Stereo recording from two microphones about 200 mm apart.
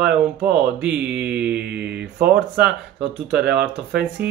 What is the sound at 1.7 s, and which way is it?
Speech, 55° right (ahead or behind).